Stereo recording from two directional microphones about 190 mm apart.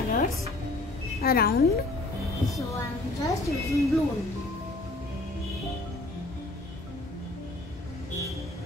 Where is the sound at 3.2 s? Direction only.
15° left (ahead or behind).